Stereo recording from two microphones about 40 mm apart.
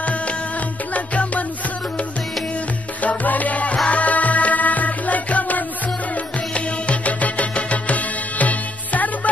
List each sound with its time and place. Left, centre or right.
0.9 s music: left
3.0 s music: left